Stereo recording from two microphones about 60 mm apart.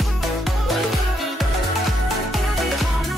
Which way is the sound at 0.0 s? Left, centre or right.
Centre.